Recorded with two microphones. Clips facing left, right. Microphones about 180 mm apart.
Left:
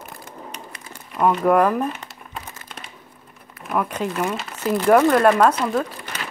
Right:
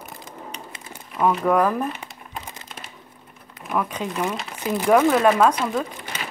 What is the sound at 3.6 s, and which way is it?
Speech, 5° left (ahead or behind).